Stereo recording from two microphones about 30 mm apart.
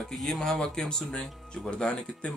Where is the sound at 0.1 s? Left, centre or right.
Centre.